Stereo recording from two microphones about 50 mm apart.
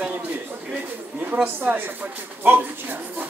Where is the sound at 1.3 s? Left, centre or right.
Right.